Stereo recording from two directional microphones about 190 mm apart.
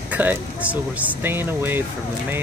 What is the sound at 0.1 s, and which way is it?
Speech, 10° right (ahead or behind).